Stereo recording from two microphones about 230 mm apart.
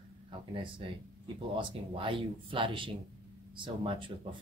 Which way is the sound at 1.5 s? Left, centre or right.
Right.